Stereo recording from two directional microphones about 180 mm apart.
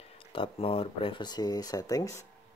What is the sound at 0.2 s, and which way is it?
Speech, 30° left (ahead or behind).